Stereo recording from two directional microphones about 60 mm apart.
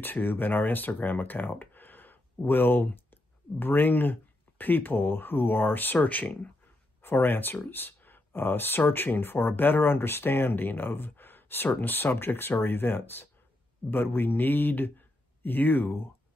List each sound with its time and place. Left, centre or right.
0.0 s speech: left
7.0 s speech: left